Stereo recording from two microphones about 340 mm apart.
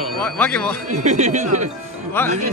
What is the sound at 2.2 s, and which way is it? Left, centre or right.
Speech, centre.